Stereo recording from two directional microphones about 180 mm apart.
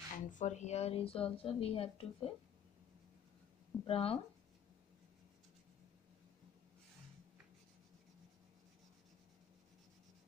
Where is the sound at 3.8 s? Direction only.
30° left (ahead or behind).